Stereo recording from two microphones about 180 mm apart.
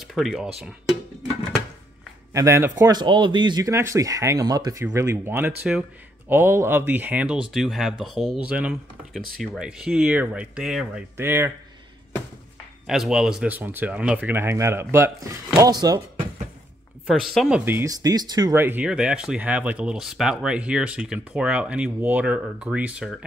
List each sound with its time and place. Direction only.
0.1 s speech: centre (ahead or behind)
2.3 s speech: 15° right (ahead or behind)
11.1 s speech: 15° right (ahead or behind)
12.8 s speech: centre (ahead or behind); by 16.3 s 25° right (ahead or behind)
17.0 s speech: centre (ahead or behind)